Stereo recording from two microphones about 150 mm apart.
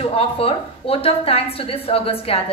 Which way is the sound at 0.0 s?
40° left (ahead or behind).